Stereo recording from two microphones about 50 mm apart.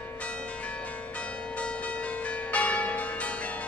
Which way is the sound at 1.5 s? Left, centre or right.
Left.